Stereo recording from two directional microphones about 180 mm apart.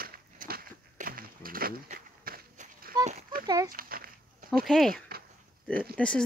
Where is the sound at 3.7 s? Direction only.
55° right (ahead or behind).